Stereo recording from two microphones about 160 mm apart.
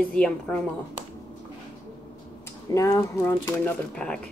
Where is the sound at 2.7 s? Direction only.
20° left (ahead or behind).